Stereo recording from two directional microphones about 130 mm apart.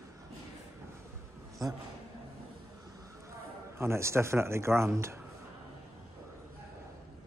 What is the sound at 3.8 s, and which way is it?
Speech, 20° right (ahead or behind).